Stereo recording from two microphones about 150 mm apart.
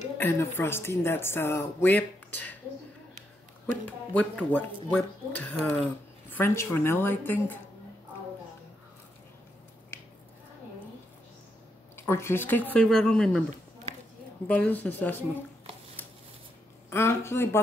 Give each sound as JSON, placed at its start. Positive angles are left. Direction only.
{"t": 0.2, "sound": "speech", "side_deg": 15}
{"t": 4.1, "sound": "speech", "side_deg": 10}
{"t": 12.1, "sound": "speech", "side_deg": 15}
{"t": 14.5, "sound": "speech", "side_deg": 10}
{"t": 16.9, "sound": "speech", "side_deg": 15}